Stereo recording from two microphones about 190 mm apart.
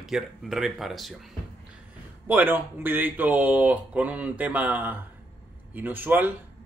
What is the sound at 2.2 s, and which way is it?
Speech, 10° right (ahead or behind).